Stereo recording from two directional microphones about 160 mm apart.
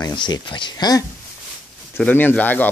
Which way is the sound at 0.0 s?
25° left (ahead or behind).